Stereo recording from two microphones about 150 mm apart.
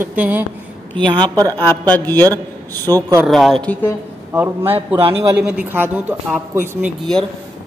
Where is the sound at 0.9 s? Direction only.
30° right (ahead or behind).